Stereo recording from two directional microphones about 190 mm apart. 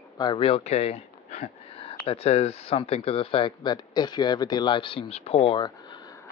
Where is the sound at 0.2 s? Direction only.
25° left (ahead or behind).